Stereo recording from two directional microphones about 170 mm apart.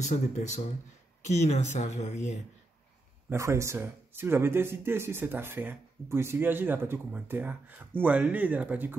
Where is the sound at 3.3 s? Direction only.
15° right (ahead or behind).